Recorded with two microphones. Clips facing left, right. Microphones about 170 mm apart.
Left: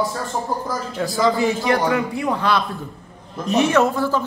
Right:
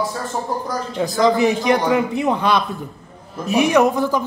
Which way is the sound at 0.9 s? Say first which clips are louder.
Right 3 dB; 20° right (ahead or behind).